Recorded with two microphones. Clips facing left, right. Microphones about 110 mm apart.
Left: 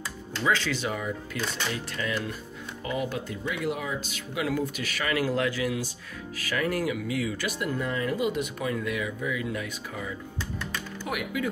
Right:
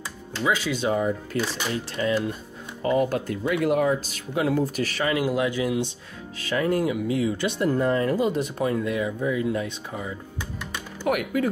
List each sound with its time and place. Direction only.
0.4 s speech: 15° right (ahead or behind)
0.8 s speech: 30° right (ahead or behind)
2.8 s speech: 40° right (ahead or behind)
5.0 s speech: 20° right (ahead or behind)
7.7 s speech: 40° right (ahead or behind)
11.1 s speech: 50° right (ahead or behind)